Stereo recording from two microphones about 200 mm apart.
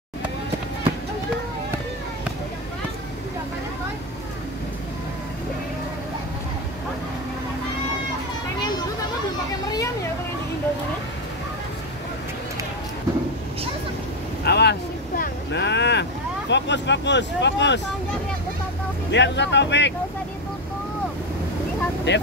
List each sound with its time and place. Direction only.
14.4 s vehicle: 55° left (ahead or behind)
19.0 s speech: 60° left (ahead or behind)
22.1 s speech: 60° left (ahead or behind)